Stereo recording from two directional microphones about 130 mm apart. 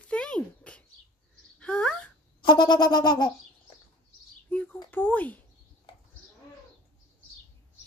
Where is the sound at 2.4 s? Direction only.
35° left (ahead or behind).